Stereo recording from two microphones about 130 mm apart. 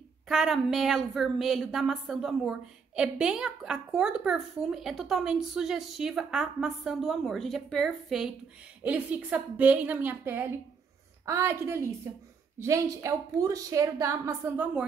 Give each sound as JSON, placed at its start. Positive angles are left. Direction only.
{"t": 0.3, "sound": "a woman's voice", "side_deg": 0}